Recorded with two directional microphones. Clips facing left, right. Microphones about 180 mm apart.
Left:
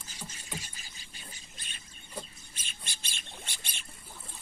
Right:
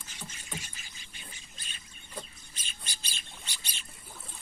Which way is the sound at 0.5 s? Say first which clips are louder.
Even; 35° left (ahead or behind).